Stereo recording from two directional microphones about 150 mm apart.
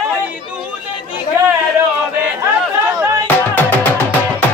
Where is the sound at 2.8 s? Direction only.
20° right (ahead or behind).